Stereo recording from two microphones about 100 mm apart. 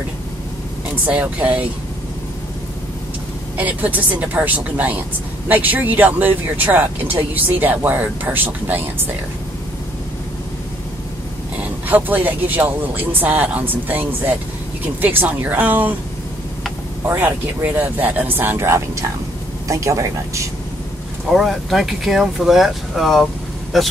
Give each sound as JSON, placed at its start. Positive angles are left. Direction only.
{"t": 1.0, "sound": "speech", "side_deg": -15}
{"t": 3.5, "sound": "speech", "side_deg": -15}
{"t": 11.9, "sound": "speech", "side_deg": -20}
{"t": 17.0, "sound": "speech", "side_deg": -20}
{"t": 21.3, "sound": "speech", "side_deg": 0}